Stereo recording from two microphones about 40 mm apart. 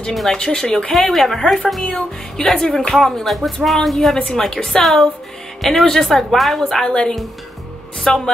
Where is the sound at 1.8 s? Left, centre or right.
Centre.